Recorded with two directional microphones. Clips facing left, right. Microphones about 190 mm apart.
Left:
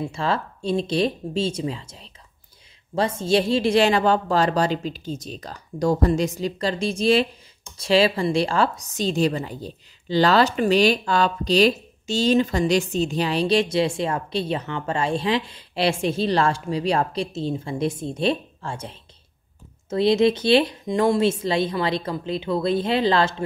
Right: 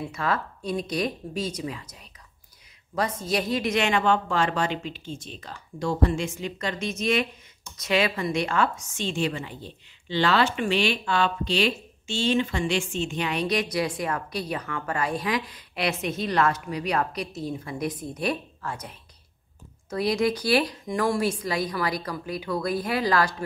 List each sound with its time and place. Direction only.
0.0 s a woman's voice: 25° left (ahead or behind)